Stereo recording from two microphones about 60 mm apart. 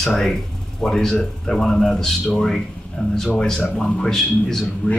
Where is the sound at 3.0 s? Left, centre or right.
Centre.